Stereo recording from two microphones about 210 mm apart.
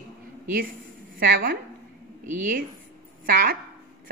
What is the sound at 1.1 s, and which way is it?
Speech, 45° right (ahead or behind).